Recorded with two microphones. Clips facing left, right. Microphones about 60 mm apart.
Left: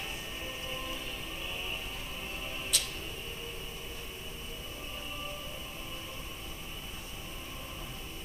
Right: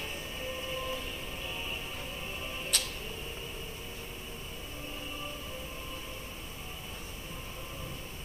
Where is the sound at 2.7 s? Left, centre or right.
Right.